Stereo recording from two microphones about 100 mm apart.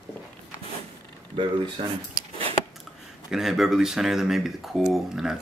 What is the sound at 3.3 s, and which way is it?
Speech, 5° right (ahead or behind).